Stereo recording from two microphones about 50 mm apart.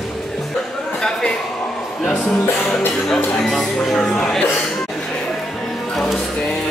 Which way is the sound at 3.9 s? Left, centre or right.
Centre.